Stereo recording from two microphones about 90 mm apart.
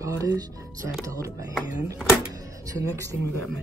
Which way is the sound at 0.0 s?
40° right (ahead or behind).